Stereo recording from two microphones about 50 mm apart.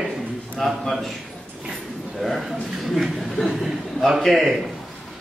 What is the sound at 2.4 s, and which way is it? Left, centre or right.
A man's voice, centre.